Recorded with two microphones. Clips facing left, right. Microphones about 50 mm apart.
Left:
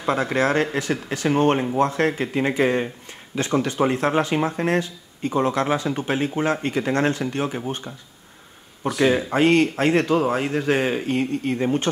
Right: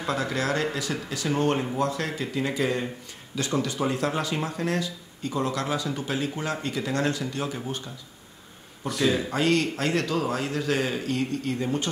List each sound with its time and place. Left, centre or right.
0.0 s speech: left
9.0 s speech: left